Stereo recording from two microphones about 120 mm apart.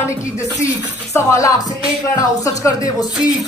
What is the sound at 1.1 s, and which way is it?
Speech, 25° left (ahead or behind).